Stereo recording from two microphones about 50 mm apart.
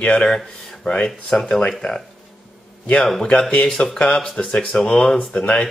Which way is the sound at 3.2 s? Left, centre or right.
Centre.